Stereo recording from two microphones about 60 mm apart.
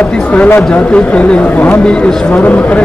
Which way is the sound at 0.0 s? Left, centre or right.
Left.